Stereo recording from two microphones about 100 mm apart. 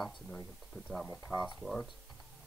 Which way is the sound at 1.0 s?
20° left (ahead or behind).